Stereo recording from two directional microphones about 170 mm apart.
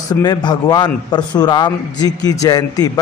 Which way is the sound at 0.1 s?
25° left (ahead or behind).